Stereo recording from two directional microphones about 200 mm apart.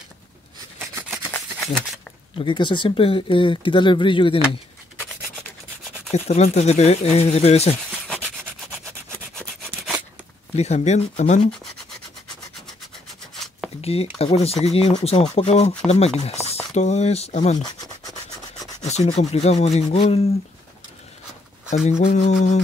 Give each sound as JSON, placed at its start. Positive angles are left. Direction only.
{"t": 1.1, "sound": "a sound", "side_deg": 0}
{"t": 2.3, "sound": "speech", "side_deg": 25}
{"t": 6.1, "sound": "speech", "side_deg": 35}
{"t": 7.9, "sound": "rub", "side_deg": 0}
{"t": 10.5, "sound": "speech", "side_deg": 30}
{"t": 13.3, "sound": "a sound", "side_deg": 0}
{"t": 13.7, "sound": "speech", "side_deg": 30}
{"t": 18.8, "sound": "speech", "side_deg": 35}
{"t": 22.0, "sound": "speech", "side_deg": 35}